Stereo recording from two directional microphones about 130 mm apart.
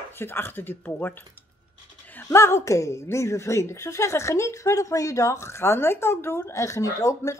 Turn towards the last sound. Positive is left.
turn(degrees=25)  # may be behind; listen again after turning